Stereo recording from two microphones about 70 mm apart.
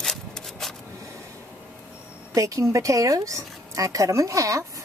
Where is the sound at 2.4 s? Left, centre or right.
Right.